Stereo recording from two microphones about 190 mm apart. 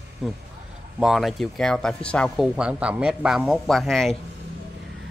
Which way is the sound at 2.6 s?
5° right (ahead or behind).